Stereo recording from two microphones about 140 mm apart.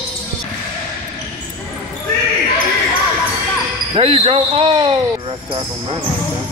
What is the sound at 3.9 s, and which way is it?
Speech, 45° right (ahead or behind).